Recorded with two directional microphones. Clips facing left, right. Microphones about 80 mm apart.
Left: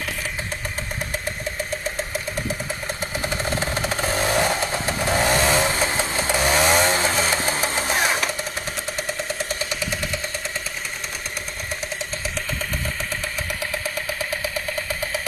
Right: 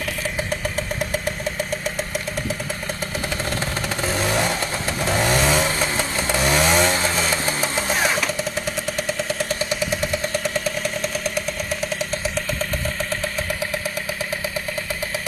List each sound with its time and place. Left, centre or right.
3.5 s vehicle: centre
6.4 s chainsaw: centre
7.0 s music: centre